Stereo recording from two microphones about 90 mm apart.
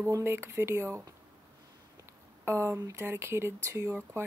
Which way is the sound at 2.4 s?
25° right (ahead or behind).